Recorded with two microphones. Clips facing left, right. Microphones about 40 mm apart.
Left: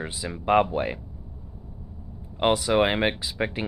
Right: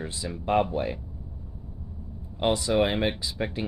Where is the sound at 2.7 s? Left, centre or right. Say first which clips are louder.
Left 2 dB; left.